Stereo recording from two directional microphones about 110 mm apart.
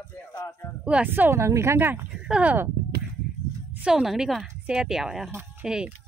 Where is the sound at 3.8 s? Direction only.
5° right (ahead or behind).